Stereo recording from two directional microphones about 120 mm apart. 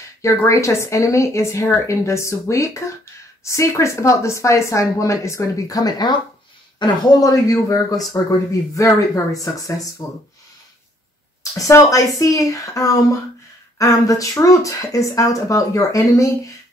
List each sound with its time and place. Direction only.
0.5 s speech: 25° left (ahead or behind)
11.5 s speech: 25° left (ahead or behind)